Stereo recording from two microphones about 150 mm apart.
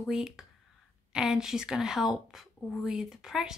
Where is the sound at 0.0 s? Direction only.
5° right (ahead or behind).